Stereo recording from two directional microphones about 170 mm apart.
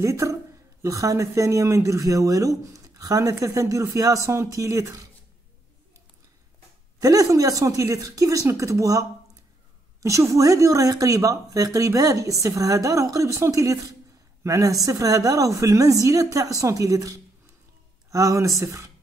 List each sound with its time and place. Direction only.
0.0 s a man's voice: 20° right (ahead or behind)
7.0 s speech: 20° right (ahead or behind)